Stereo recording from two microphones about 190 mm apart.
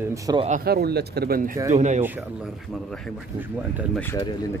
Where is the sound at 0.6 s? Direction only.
55° right (ahead or behind).